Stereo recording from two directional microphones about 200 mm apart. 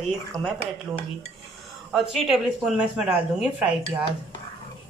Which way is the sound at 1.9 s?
Centre (ahead or behind).